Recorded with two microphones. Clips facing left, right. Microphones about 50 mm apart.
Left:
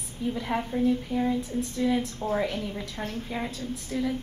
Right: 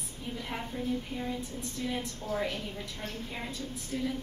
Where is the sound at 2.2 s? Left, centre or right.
Left.